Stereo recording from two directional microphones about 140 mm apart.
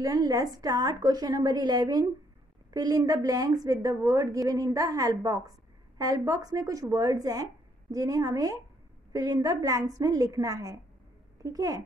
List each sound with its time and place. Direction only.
0.0 s a woman's voice: 25° right (ahead or behind)